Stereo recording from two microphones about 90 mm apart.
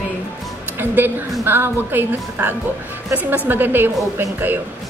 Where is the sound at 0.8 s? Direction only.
20° right (ahead or behind).